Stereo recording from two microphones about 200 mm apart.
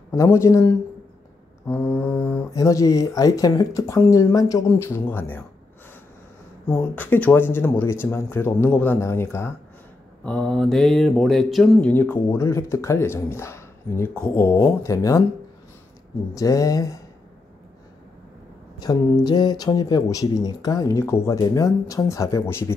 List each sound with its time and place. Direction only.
0.1 s speech: 15° left (ahead or behind)
6.7 s speech: 10° left (ahead or behind)
16.3 s speech: 15° left (ahead or behind)
18.8 s speech: 20° left (ahead or behind)